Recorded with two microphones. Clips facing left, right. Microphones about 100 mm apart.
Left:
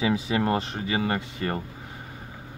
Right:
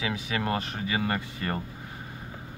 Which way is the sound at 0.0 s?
35° left (ahead or behind).